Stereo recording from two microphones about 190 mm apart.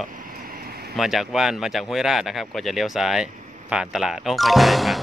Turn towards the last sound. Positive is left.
turn(degrees=0)  # may be behind; listen again after turning